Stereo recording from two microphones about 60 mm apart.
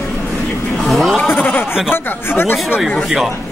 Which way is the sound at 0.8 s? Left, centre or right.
Centre.